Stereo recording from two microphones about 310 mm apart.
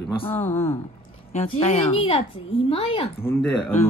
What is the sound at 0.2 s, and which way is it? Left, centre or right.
Speech, centre.